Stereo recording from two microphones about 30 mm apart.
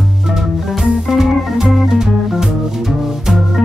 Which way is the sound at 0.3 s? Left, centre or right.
Centre.